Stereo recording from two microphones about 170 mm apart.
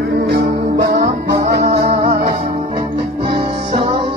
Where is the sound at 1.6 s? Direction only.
70° right (ahead or behind).